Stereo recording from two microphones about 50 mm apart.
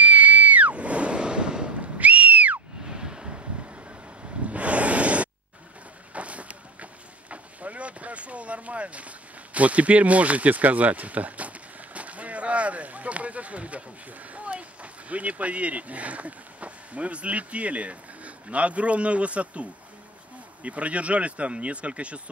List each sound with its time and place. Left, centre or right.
0.0 s a sound: right
2.0 s whistle: right
2.9 s vehicle: centre
4.5 s a sound: right
6.1 s boat: right
14.3 s speech: right